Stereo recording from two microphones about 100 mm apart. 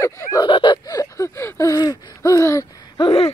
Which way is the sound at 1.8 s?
40° left (ahead or behind).